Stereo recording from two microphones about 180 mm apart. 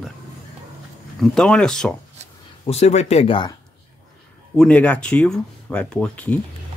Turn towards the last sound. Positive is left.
turn(degrees=5)  # may be behind; listen again after turning